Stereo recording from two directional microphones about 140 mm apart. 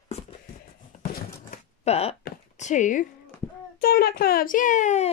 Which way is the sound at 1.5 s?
45° left (ahead or behind).